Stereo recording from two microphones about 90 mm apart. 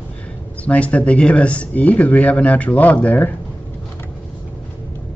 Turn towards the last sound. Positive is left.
turn(degrees=20)  # may be behind; listen again after turning